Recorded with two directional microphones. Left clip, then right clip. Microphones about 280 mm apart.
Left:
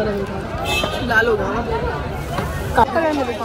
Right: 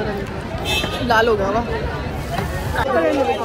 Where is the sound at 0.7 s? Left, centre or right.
Centre.